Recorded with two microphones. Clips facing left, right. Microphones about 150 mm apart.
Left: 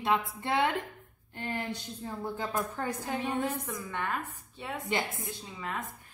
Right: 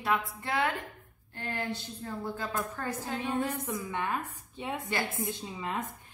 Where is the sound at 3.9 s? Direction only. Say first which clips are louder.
Left 1 dB; 15° right (ahead or behind).